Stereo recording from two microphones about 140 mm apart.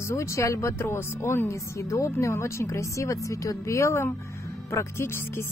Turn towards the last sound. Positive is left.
turn(degrees=15)  # may be behind; listen again after turning